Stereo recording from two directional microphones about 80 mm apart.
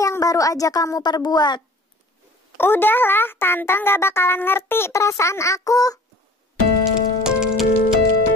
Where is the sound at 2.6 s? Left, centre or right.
Left.